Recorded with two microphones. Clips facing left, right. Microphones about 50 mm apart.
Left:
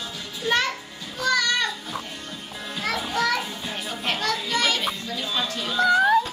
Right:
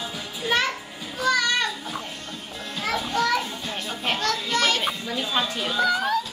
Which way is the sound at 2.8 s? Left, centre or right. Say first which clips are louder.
Right 1 dB; centre.